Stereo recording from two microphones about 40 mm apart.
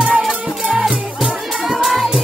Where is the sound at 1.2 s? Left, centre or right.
Centre.